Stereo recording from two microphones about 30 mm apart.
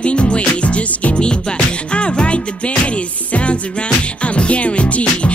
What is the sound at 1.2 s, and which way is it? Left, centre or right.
Music, left.